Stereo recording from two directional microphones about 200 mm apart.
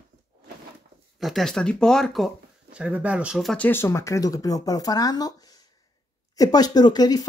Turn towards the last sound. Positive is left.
turn(degrees=20)  # may be behind; listen again after turning